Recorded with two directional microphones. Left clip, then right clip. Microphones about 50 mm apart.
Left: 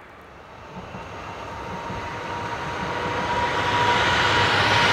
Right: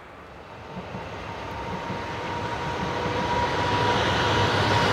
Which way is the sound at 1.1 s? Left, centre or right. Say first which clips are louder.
Left 2 dB; left.